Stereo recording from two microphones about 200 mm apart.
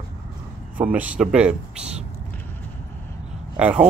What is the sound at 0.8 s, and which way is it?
Speech, 5° right (ahead or behind).